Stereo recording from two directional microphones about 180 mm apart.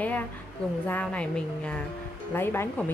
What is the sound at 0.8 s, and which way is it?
A woman's voice, 10° left (ahead or behind).